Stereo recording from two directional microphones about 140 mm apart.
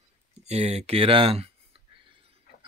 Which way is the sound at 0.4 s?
50° right (ahead or behind).